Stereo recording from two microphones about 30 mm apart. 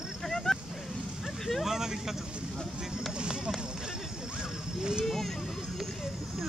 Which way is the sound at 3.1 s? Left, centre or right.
Right.